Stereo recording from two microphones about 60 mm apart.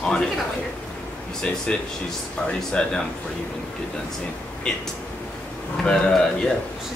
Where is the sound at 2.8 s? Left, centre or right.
Centre.